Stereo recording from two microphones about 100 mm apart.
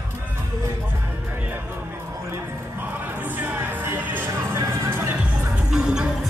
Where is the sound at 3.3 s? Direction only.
15° right (ahead or behind).